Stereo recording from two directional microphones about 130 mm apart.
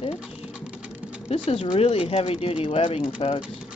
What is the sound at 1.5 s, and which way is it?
Speech, 50° left (ahead or behind).